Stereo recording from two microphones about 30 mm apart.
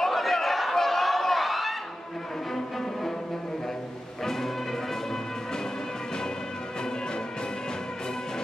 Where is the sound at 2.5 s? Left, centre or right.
Centre.